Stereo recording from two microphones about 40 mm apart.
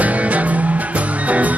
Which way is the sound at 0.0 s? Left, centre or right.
Right.